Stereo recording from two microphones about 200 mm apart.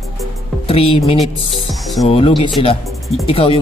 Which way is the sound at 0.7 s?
30° left (ahead or behind).